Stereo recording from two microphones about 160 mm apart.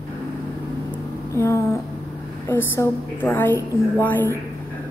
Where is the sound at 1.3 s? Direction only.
20° left (ahead or behind).